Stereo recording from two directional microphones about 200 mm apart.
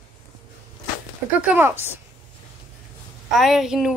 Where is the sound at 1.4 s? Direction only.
10° right (ahead or behind).